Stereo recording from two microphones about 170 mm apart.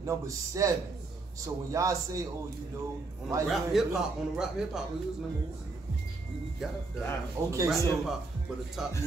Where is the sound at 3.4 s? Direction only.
Centre (ahead or behind).